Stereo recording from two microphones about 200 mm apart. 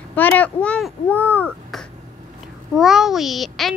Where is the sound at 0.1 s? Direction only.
10° left (ahead or behind).